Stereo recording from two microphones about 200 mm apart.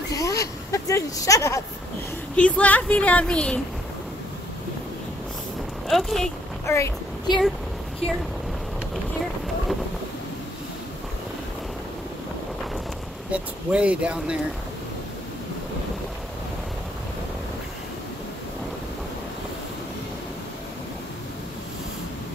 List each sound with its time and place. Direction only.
0.1 s a sound: 15° left (ahead or behind)
2.3 s a woman's voice: 5° left (ahead or behind)
5.9 s speech: centre (ahead or behind)
6.6 s speech: 15° left (ahead or behind)
13.3 s speech: 5° right (ahead or behind)